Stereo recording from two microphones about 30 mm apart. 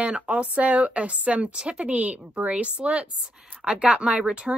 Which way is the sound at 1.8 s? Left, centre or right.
Right.